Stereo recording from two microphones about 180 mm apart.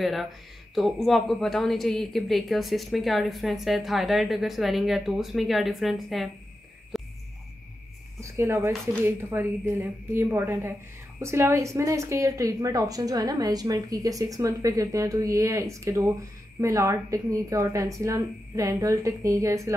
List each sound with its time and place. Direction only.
0.0 s a woman's voice: centre (ahead or behind)
6.9 s music: centre (ahead or behind)
8.2 s a woman's voice: 15° right (ahead or behind)